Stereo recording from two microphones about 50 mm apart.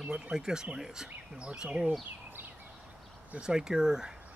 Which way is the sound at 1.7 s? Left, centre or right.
Right.